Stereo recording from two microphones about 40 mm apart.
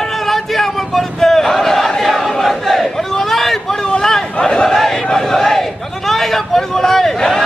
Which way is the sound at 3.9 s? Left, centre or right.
Centre.